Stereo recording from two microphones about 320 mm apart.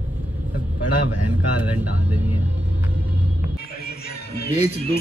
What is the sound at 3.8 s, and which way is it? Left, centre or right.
Music, left.